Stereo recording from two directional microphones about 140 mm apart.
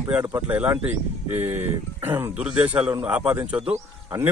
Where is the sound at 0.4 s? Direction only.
10° right (ahead or behind).